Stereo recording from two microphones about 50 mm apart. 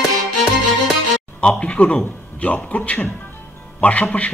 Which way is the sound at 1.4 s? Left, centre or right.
Left.